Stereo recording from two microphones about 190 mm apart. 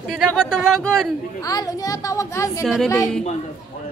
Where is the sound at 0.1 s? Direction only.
Centre (ahead or behind).